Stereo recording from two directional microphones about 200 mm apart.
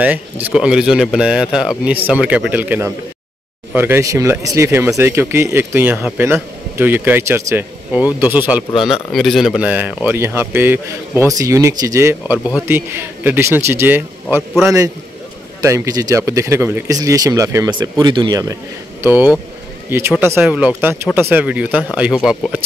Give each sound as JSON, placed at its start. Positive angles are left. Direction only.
{"t": 0.0, "sound": "speech", "side_deg": -10}
{"t": 15.6, "sound": "speech", "side_deg": -15}